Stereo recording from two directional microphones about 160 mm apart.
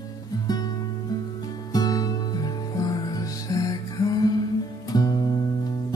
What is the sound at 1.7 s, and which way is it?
Music, 25° left (ahead or behind).